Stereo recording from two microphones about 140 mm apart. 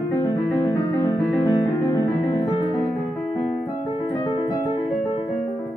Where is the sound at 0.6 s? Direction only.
35° left (ahead or behind).